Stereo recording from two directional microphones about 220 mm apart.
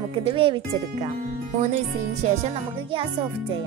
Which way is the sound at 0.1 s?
25° right (ahead or behind).